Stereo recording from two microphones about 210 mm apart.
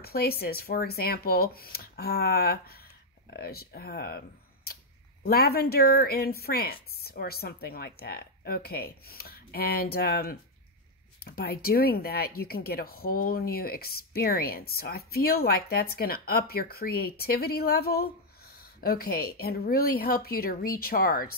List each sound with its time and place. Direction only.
0.0 s speech: 45° left (ahead or behind)
5.2 s speech: 50° left (ahead or behind)